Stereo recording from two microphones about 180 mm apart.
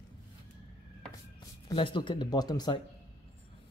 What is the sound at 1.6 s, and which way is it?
Speech, 25° left (ahead or behind).